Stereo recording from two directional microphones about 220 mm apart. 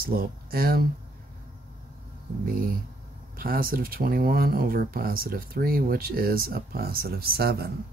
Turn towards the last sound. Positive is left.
turn(degrees=-45)  # may be behind; listen again after turning